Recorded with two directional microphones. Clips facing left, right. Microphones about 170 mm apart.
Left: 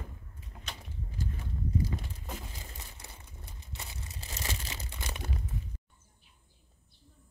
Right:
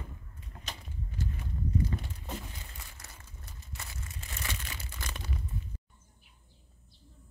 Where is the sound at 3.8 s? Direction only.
25° left (ahead or behind).